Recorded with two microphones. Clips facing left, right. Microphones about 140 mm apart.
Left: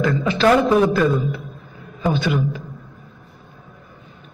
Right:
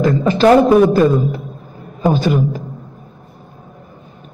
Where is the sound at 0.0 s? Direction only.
40° right (ahead or behind).